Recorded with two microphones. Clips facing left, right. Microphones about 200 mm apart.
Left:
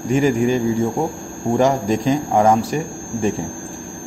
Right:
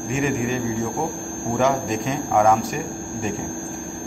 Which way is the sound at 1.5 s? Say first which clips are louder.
Left 4 dB; 35° left (ahead or behind).